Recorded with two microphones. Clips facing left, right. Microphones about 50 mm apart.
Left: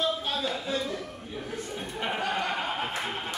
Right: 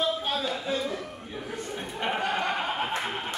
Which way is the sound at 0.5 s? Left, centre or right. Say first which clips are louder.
Right 1 dB; centre.